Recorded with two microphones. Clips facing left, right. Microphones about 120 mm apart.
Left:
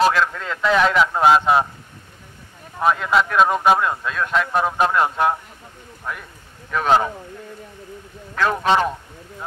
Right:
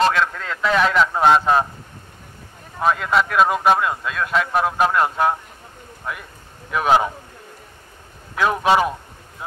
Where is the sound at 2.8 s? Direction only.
5° left (ahead or behind).